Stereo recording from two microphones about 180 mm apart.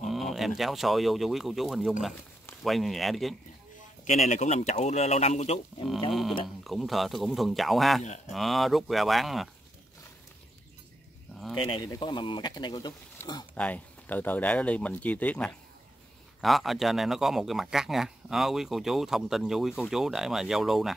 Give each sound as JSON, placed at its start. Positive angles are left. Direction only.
{"t": 0.1, "sound": "a sound", "side_deg": 0}
{"t": 0.6, "sound": "speech", "side_deg": 0}
{"t": 4.0, "sound": "speech", "side_deg": 40}
{"t": 6.4, "sound": "speech", "side_deg": 0}
{"t": 11.5, "sound": "speech", "side_deg": 30}
{"t": 13.6, "sound": "speech", "side_deg": 10}